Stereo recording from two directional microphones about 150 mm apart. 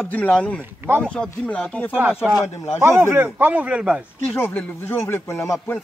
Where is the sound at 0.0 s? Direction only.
10° left (ahead or behind).